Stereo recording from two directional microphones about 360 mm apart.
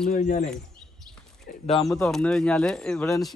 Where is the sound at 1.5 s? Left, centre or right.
Left.